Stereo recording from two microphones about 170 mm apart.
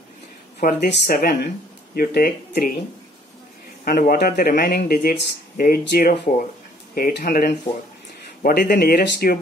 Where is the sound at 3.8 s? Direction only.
65° left (ahead or behind).